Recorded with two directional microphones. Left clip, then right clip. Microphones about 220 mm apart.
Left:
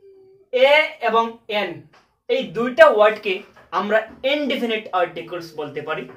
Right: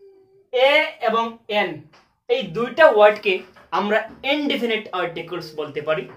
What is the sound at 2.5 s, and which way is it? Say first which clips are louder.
Speech: left 2 dB; 25° right (ahead or behind).